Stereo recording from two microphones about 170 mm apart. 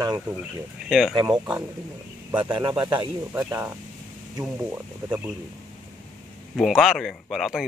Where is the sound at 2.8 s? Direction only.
20° right (ahead or behind).